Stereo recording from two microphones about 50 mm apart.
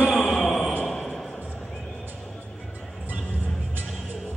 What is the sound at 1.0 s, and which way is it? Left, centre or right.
Basketball bounce, centre.